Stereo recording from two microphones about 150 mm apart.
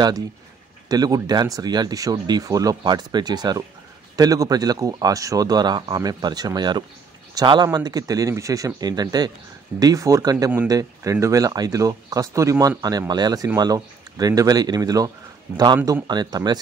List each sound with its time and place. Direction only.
0.8 s speech: 25° right (ahead or behind)